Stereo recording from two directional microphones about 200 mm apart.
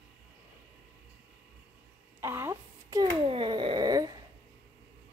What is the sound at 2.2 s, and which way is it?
Speech, 15° right (ahead or behind).